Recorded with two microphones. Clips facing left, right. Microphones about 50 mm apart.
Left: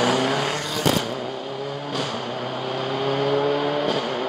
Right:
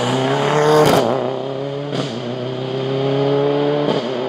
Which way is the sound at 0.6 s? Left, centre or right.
Right.